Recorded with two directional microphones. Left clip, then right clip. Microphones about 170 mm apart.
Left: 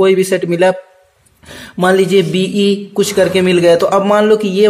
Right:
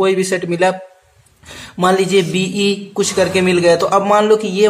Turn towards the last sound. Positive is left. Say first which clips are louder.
# left 2 dB
turn(degrees=25)  # may be behind; listen again after turning